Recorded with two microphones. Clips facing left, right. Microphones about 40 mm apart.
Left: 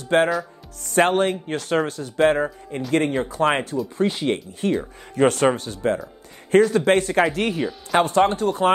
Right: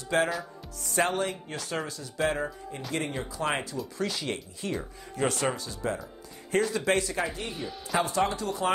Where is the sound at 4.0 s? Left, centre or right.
Left.